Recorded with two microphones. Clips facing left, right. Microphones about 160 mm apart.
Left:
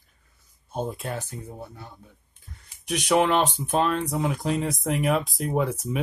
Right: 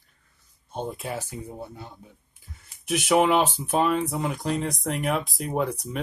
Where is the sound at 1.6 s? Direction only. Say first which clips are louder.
Right 2 dB; 20° right (ahead or behind).